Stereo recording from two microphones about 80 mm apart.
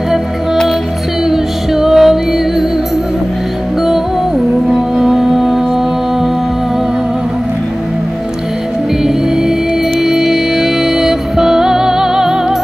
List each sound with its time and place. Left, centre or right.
1.3 s music: centre
4.6 s music: centre
9.9 s music: centre